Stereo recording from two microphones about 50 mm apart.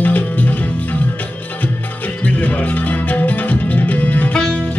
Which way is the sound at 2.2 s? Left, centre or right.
Left.